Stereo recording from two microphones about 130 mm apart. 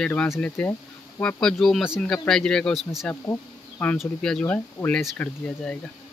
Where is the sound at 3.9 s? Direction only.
5° left (ahead or behind).